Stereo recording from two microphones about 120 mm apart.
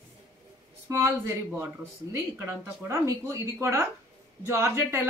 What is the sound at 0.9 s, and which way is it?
Speech, 25° right (ahead or behind).